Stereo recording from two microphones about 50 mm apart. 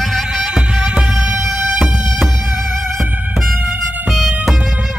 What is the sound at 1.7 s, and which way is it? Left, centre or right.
Music, centre.